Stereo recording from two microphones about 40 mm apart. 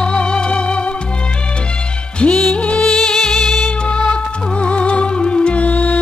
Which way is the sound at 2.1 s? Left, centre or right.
Left.